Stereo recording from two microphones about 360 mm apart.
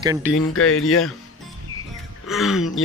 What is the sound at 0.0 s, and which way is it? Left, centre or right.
Speech, centre.